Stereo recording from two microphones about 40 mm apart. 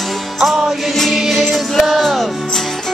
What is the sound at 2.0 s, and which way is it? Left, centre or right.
Music, centre.